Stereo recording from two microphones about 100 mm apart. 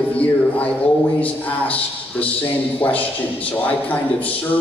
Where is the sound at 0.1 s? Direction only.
15° left (ahead or behind).